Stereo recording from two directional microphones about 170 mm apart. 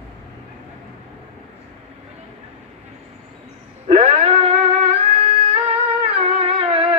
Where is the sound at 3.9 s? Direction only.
45° right (ahead or behind).